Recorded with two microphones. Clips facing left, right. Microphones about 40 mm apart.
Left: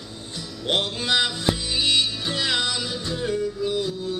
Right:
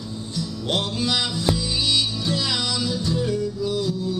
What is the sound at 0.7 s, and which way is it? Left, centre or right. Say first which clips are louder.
Music: left 1 dB; left.